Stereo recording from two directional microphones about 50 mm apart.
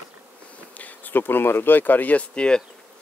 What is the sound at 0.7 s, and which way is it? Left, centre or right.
Speech, left.